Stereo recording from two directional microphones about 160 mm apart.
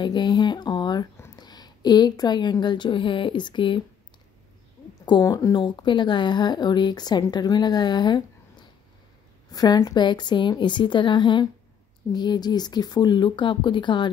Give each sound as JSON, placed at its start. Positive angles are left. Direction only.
{"t": 0.0, "sound": "speech", "side_deg": 30}
{"t": 5.0, "sound": "speech", "side_deg": 25}